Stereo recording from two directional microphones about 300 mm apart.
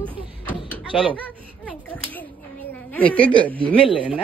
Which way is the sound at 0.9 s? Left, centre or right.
Centre.